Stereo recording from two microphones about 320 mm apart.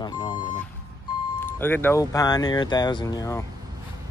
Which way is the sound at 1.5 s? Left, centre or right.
Centre.